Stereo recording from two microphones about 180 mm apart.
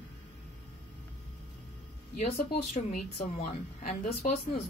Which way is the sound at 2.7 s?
50° left (ahead or behind).